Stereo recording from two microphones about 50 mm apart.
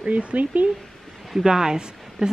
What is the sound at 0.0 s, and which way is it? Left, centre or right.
Speech, right.